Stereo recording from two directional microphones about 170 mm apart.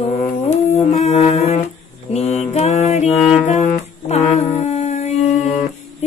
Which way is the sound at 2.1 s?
40° left (ahead or behind).